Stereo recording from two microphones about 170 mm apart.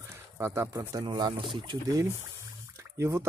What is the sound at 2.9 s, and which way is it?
Speech, 15° right (ahead or behind).